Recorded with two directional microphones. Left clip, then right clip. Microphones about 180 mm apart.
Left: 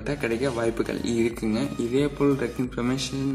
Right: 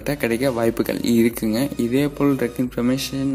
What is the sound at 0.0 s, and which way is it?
Speech, 40° right (ahead or behind).